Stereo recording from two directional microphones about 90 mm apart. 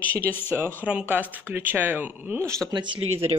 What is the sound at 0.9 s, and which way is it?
A woman's voice, 15° right (ahead or behind).